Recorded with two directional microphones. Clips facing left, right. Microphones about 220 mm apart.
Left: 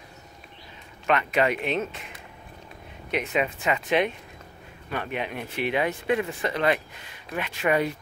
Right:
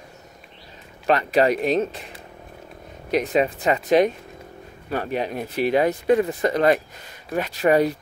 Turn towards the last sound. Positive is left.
turn(degrees=-40)  # may be behind; listen again after turning